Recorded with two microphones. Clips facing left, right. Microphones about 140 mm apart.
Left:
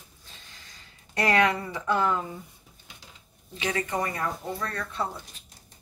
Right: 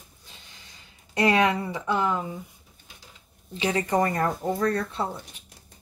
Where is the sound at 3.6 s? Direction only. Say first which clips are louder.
Right 5 dB; 30° right (ahead or behind).